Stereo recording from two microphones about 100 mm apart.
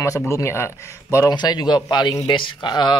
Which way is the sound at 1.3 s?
45° left (ahead or behind).